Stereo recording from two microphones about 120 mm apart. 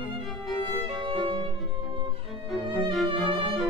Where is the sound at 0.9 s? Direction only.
45° right (ahead or behind).